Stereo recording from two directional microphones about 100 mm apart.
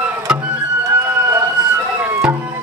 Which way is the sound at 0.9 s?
25° right (ahead or behind).